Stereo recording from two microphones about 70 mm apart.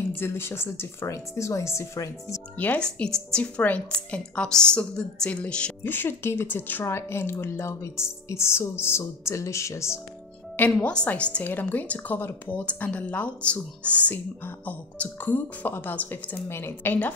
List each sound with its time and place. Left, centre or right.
0.1 s speech: left
2.5 s speech: left
2.8 s a woman's voice: centre
5.8 s speech: left
6.8 s speech: left
10.8 s a woman's voice: centre
16.4 s speech: left